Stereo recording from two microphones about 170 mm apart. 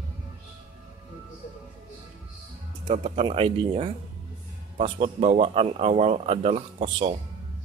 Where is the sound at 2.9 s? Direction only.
35° right (ahead or behind).